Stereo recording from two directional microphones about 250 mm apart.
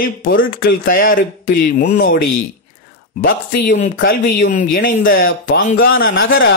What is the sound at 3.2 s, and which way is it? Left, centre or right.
A man's voice, left.